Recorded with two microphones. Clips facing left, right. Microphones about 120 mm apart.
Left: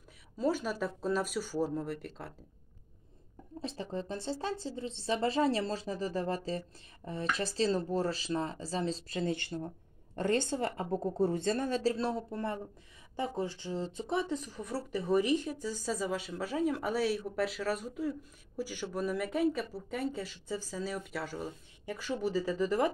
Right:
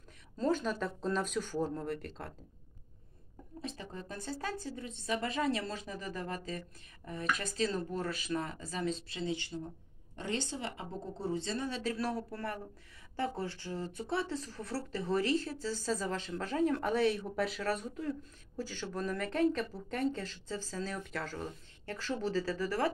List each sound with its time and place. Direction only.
0.4 s speech: 5° left (ahead or behind)
3.6 s a woman's voice: 30° left (ahead or behind)
9.2 s speech: 55° left (ahead or behind)
11.8 s speech: 25° left (ahead or behind)